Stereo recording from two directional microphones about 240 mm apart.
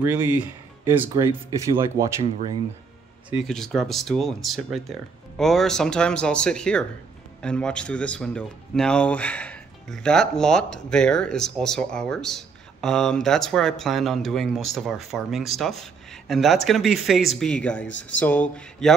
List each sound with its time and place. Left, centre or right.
0.0 s speech: centre
3.3 s speech: centre